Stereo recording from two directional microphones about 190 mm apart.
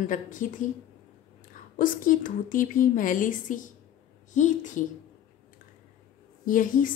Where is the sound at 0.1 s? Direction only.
45° left (ahead or behind).